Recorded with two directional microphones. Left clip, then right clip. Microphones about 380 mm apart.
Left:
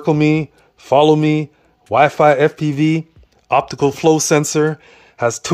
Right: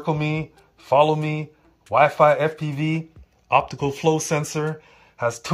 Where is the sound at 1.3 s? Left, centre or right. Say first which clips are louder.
Left 11 dB; left.